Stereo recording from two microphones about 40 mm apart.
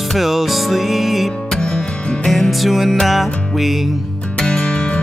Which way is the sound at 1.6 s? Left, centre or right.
Left.